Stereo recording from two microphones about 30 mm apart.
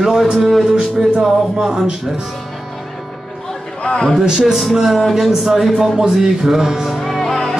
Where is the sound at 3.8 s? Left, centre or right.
Left.